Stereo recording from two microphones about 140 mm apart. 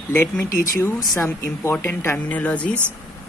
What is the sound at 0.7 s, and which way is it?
Speech, 20° left (ahead or behind).